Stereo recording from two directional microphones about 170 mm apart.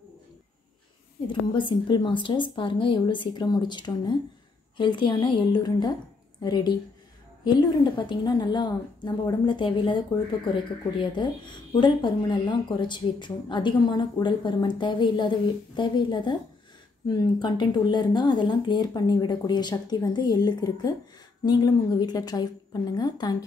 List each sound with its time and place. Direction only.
1.2 s a woman's voice: 30° left (ahead or behind)